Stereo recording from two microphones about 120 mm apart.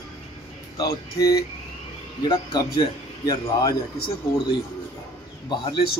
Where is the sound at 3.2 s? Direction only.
30° left (ahead or behind).